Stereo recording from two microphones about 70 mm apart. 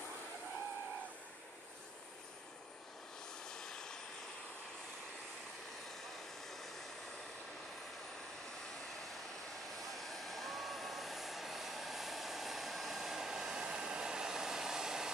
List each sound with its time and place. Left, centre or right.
3.4 s vehicle: centre
6.4 s vehicle: centre
9.9 s vehicle: centre